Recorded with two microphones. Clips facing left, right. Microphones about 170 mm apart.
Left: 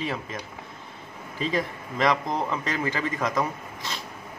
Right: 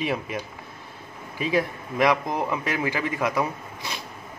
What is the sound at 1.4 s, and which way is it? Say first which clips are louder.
A man's voice: right 3 dB; 10° right (ahead or behind).